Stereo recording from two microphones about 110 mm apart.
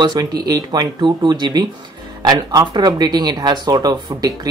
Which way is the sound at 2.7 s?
40° right (ahead or behind).